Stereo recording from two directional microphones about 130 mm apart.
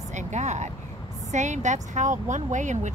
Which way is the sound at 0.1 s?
65° right (ahead or behind).